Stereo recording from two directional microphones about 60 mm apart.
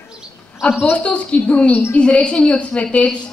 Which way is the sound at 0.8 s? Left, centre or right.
Left.